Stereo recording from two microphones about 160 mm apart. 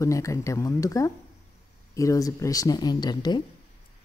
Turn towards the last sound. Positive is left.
turn(degrees=25)  # may be behind; listen again after turning